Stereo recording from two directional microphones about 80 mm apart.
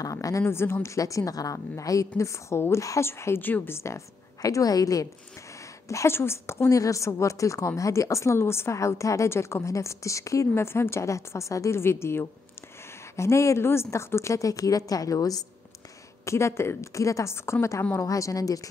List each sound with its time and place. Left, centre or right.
0.0 s a woman's voice: left
5.9 s a woman's voice: left
16.3 s a woman's voice: left